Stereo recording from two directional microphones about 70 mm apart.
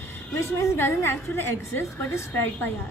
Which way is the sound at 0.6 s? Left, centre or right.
Left.